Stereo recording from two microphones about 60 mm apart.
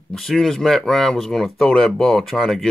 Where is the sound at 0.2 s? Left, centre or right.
Centre.